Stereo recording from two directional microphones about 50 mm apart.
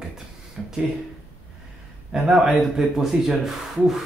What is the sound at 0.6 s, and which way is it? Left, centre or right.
Speech, centre.